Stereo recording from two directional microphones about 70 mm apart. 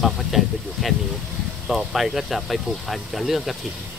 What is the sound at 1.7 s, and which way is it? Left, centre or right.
Speech, centre.